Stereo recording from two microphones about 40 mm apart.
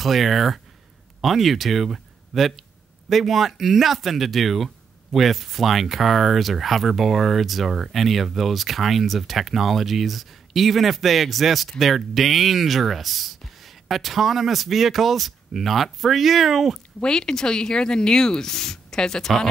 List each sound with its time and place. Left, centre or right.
0.0 s speech: centre
17.0 s speech: centre